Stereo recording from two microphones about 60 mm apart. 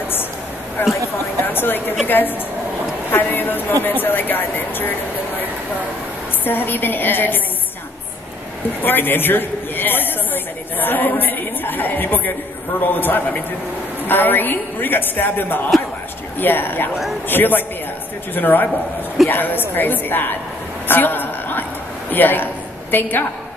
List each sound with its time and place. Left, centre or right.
1.4 s a sound: left
2.0 s a woman's voice: left
6.4 s a woman's voice: left
8.8 s a woman's voice: left
20.9 s a sound: left
22.1 s a woman's voice: left